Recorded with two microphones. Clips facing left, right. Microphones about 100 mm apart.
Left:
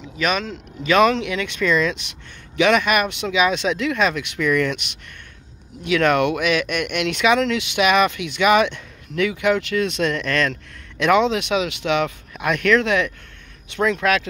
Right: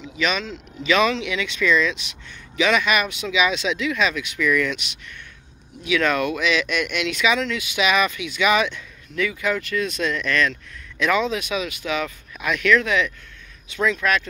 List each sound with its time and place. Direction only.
0.2 s speech: 50° left (ahead or behind)
5.9 s speech: 55° left (ahead or behind)